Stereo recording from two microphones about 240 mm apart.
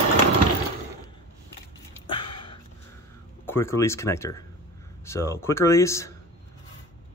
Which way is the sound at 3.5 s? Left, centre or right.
Centre.